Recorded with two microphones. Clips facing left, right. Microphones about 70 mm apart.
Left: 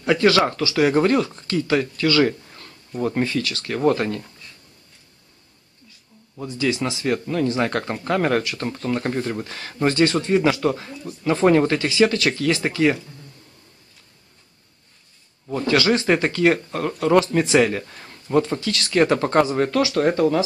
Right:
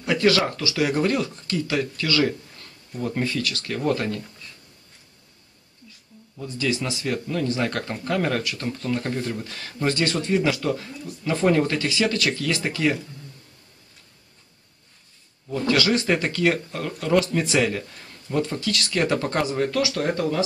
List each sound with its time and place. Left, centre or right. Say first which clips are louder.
0.2 s speech: left 1 dB; left
6.3 s speech: left 3 dB; left
7.1 s speech: left 4 dB; left
7.9 s speech: left 3 dB; left
8.2 s speech: left 5 dB; left
8.5 s speech: left 2 dB; left
15.6 s speech: left 3 dB; left
20.2 s speech: left 4 dB; left